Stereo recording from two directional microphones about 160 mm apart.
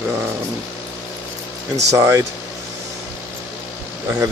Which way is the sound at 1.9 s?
20° right (ahead or behind).